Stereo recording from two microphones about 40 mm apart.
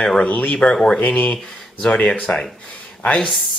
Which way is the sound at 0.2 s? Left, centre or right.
Left.